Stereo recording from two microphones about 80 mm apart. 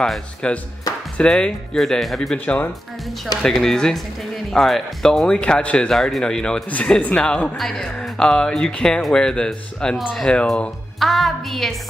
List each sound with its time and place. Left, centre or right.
0.0 s a woman's voice: centre
2.3 s speech: centre
3.4 s a woman's voice: centre